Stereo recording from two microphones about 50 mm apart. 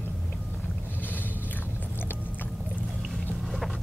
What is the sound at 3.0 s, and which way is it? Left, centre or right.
Boat, centre.